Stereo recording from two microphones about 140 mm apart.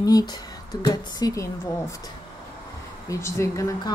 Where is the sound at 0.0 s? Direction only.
25° left (ahead or behind).